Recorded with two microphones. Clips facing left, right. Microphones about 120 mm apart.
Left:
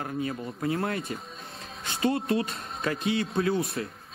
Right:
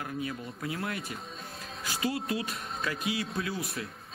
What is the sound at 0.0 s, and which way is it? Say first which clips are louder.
Speech: left 4 dB; 40° left (ahead or behind).